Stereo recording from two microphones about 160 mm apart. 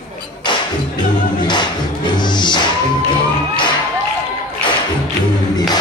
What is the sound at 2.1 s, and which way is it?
Music, 30° left (ahead or behind).